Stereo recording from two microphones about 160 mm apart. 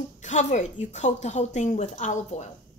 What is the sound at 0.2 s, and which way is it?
A woman's voice, 50° left (ahead or behind).